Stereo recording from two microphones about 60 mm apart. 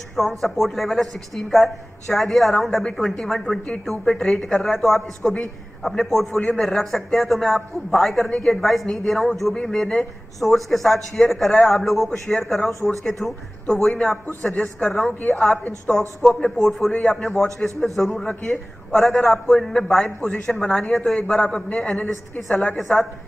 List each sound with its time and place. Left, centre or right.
0.1 s a man's voice: centre
14.5 s speech: left
14.9 s speech: centre
16.2 s a man's voice: centre
17.1 s a man's voice: centre
20.2 s a man's voice: centre
22.8 s speech: centre